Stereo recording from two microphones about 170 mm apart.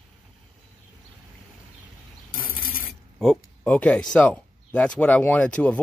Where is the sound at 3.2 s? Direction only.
5° left (ahead or behind).